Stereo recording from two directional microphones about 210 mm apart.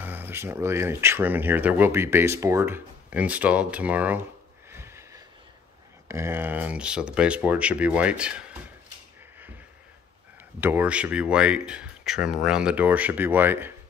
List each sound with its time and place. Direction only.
0.0 s speech: 10° right (ahead or behind)
4.6 s sniff: 10° right (ahead or behind)
6.0 s speech: 10° right (ahead or behind)
10.6 s speech: 10° right (ahead or behind)